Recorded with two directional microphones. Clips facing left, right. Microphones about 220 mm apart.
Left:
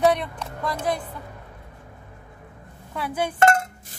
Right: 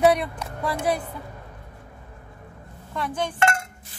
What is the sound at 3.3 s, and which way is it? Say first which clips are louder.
Dishes: left 6 dB; 40° left (ahead or behind).